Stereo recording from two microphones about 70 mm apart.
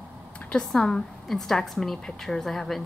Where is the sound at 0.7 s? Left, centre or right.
Centre.